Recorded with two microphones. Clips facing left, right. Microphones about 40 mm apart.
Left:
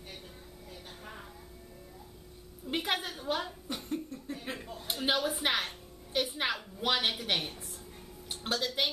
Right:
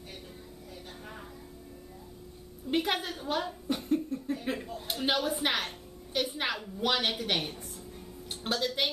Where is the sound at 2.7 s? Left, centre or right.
Centre.